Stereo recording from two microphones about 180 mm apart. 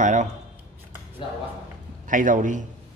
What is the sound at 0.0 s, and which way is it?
Speech, 45° right (ahead or behind).